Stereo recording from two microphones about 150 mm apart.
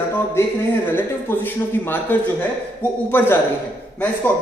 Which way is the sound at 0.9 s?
15° left (ahead or behind).